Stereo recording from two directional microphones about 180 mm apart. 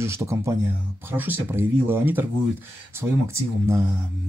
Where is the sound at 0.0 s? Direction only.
15° right (ahead or behind).